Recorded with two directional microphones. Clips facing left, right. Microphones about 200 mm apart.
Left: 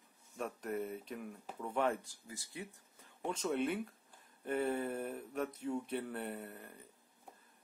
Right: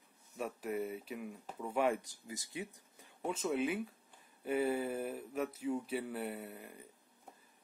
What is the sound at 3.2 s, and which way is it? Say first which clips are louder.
Speech: right 1 dB; 5° right (ahead or behind).